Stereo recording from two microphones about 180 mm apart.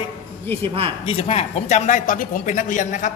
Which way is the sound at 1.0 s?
30° left (ahead or behind).